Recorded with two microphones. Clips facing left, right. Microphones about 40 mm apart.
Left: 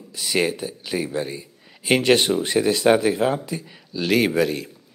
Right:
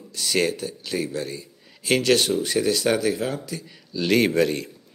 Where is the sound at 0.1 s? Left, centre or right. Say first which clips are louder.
Left 1 dB; centre.